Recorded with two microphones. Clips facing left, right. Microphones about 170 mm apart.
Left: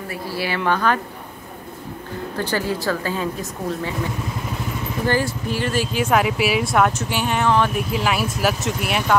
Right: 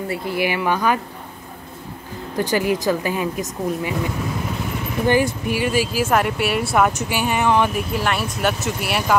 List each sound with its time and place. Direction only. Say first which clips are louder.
0.1 s speech: right 3 dB; 20° right (ahead or behind)
2.3 s speech: right 4 dB; 15° right (ahead or behind)
5.0 s speech: right 4 dB; 15° right (ahead or behind)
7.7 s speech: even; centre (ahead or behind)